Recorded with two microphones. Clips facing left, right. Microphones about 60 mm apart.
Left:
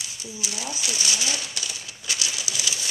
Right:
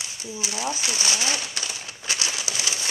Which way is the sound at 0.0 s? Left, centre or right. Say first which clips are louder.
Right 2 dB; right.